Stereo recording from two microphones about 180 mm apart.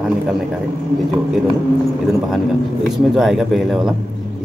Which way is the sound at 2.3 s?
Centre (ahead or behind).